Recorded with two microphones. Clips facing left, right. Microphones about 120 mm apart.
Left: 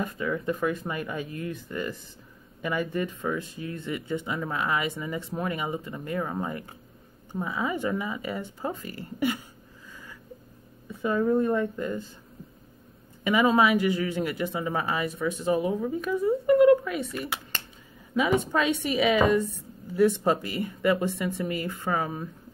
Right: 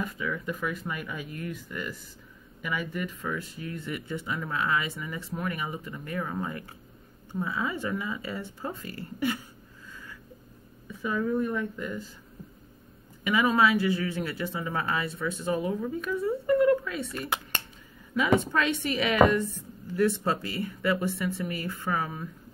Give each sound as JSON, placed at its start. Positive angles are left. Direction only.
{"t": 0.0, "sound": "speech", "side_deg": 30}
{"t": 10.9, "sound": "speech", "side_deg": 25}
{"t": 13.3, "sound": "speech", "side_deg": 20}